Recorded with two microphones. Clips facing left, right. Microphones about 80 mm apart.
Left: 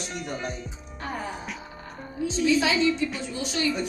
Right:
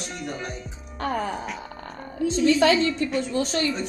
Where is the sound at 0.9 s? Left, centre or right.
Right.